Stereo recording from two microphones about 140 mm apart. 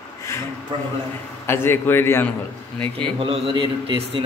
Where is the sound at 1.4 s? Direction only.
15° left (ahead or behind).